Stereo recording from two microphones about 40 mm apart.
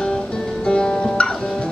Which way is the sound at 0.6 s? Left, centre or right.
Left.